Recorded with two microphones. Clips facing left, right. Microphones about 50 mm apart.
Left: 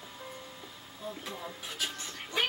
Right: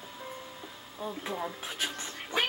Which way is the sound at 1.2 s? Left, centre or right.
Right.